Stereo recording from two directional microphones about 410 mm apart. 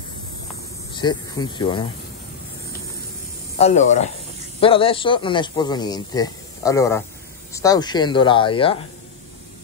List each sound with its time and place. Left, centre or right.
0.9 s speech: centre
3.5 s speech: centre